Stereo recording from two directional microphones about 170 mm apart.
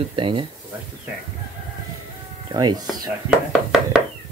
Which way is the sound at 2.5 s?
25° right (ahead or behind).